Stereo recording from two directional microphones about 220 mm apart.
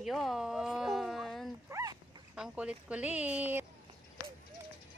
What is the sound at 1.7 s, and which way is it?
Dog, 15° right (ahead or behind).